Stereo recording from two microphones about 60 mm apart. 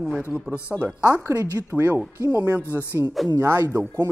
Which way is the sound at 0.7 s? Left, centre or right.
Right.